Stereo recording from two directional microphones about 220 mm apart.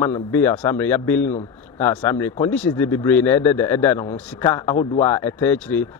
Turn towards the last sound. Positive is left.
turn(degrees=5)  # may be behind; listen again after turning